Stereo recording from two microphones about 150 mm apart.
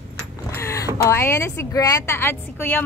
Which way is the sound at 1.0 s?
15° left (ahead or behind).